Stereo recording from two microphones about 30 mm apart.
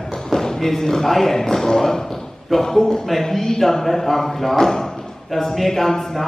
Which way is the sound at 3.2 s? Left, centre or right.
Centre.